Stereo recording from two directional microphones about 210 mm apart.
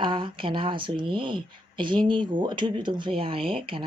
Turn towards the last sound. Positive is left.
turn(degrees=-25)  # may be behind; listen again after turning